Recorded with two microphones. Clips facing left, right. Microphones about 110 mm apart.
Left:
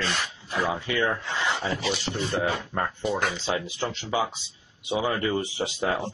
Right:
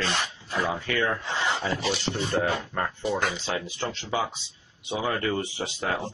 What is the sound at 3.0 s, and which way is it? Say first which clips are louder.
Speech: even; centre (ahead or behind).